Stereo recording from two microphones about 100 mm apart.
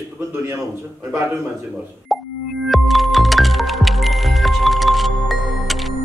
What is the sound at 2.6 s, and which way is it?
Music, centre (ahead or behind).